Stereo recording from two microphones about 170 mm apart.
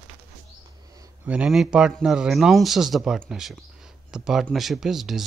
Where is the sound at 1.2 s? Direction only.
5° right (ahead or behind).